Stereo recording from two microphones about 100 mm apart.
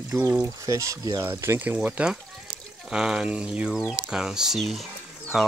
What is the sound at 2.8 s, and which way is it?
Speech, 5° right (ahead or behind).